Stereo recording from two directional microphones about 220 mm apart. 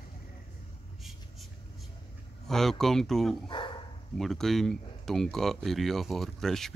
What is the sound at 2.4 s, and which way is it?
Speech, centre (ahead or behind).